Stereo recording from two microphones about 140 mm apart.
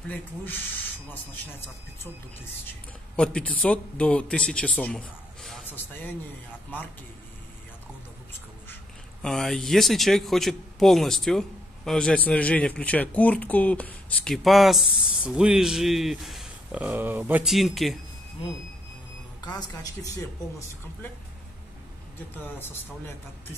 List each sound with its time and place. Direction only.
3.2 s a man's voice: 10° left (ahead or behind)
9.2 s speech: 5° left (ahead or behind)
18.4 s a sound: 40° left (ahead or behind)
19.4 s a woman's voice: 30° left (ahead or behind)
22.3 s a man's voice: 15° left (ahead or behind)